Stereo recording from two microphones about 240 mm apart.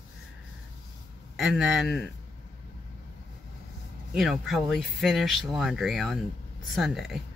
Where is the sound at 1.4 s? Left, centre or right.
Centre.